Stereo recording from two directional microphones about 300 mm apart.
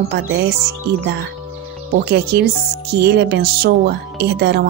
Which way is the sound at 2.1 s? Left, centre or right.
Right.